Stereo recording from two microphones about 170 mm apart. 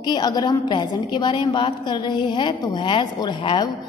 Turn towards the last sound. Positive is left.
turn(degrees=25)  # may be behind; listen again after turning